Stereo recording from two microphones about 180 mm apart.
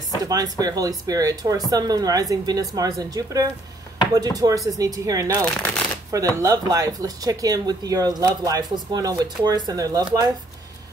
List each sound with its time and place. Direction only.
0.2 s speech: 20° right (ahead or behind)